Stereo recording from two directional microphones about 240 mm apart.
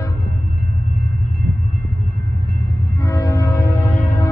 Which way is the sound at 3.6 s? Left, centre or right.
Left.